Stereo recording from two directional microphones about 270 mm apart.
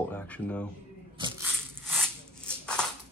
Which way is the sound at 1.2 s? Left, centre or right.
Centre.